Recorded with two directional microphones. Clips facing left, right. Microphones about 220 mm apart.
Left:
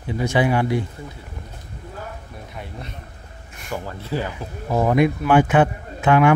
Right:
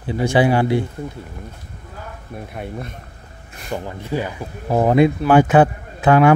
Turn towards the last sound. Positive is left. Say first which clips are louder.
# right 3 dB
turn(degrees=-35)  # may be behind; listen again after turning